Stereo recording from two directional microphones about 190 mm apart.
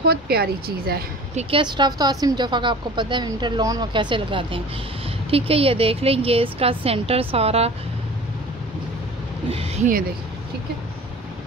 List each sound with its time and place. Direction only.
0.0 s a woman's voice: 55° right (ahead or behind)
1.3 s a woman's voice: 25° right (ahead or behind)
9.5 s a sound: 30° right (ahead or behind)